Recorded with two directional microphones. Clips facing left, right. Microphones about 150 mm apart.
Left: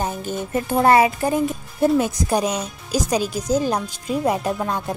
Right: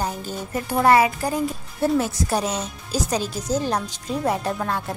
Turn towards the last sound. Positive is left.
turn(degrees=15)  # may be behind; listen again after turning